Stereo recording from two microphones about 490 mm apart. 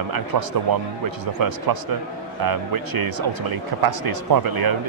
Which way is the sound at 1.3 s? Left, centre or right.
Right.